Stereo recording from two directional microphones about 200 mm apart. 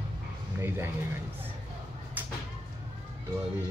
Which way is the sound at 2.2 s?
10° right (ahead or behind).